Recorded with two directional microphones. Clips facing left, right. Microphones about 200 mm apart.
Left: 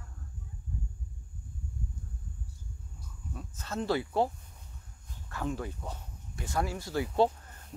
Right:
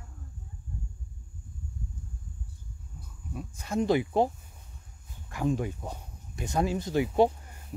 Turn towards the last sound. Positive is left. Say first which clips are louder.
# right 4 dB
turn(degrees=-10)  # may be behind; listen again after turning